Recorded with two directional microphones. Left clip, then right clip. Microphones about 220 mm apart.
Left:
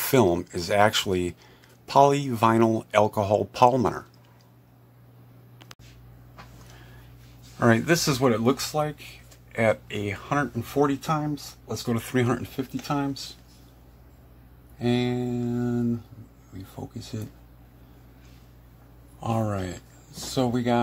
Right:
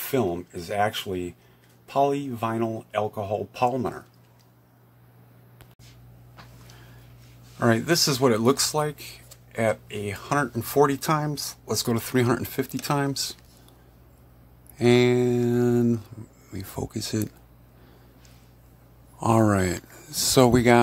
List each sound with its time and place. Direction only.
0.1 s speech: 20° left (ahead or behind)
7.5 s speech: centre (ahead or behind)
8.3 s speech: 20° right (ahead or behind)
9.5 s speech: 5° right (ahead or behind)
10.1 s speech: 15° right (ahead or behind)
10.6 s speech: 25° right (ahead or behind)
11.9 s speech: 15° right (ahead or behind)
12.5 s mantra: 35° right (ahead or behind)
14.8 s mantra: 35° right (ahead or behind)
19.1 s speech: 30° right (ahead or behind)
20.3 s mantra: 35° right (ahead or behind)